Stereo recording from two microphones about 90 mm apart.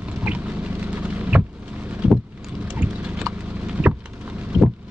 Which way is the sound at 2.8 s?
15° right (ahead or behind).